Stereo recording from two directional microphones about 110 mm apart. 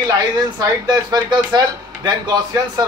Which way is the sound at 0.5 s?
40° right (ahead or behind).